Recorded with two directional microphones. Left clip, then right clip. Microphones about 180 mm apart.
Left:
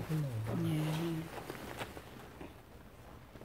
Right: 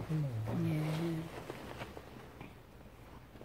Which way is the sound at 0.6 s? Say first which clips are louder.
Even; 25° left (ahead or behind).